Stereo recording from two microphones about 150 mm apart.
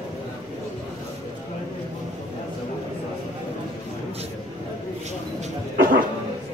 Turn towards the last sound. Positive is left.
turn(degrees=-65)  # may be behind; listen again after turning